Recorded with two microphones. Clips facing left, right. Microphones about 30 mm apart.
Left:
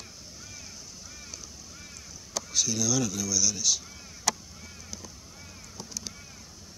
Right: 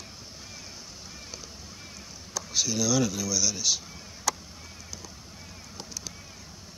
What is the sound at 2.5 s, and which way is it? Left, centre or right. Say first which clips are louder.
Speech: right 2 dB; centre.